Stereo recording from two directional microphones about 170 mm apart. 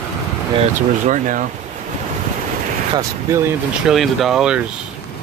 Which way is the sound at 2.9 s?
15° right (ahead or behind).